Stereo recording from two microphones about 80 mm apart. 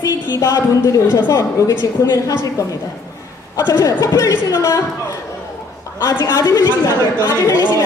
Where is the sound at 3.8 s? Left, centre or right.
Left.